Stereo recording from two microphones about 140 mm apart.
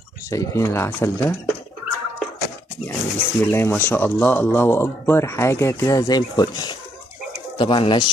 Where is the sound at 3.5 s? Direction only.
15° left (ahead or behind).